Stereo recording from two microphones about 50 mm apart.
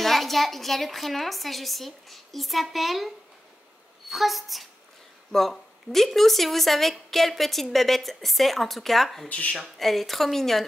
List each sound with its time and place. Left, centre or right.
0.0 s a woman's voice: centre
4.1 s a woman's voice: centre
9.3 s speech: left
9.6 s a woman's voice: centre